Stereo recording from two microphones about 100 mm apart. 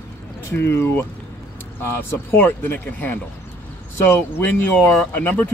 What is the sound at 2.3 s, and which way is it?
Speech, 20° left (ahead or behind).